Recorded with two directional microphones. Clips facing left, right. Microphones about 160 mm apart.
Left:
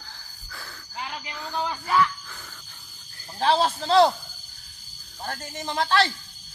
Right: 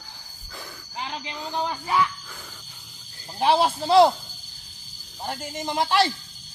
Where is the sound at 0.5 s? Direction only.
20° right (ahead or behind).